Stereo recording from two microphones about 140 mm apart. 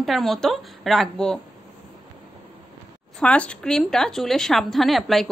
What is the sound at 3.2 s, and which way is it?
A woman's voice, 10° left (ahead or behind).